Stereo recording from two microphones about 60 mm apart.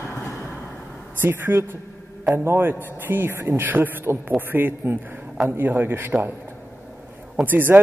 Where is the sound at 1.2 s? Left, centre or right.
Right.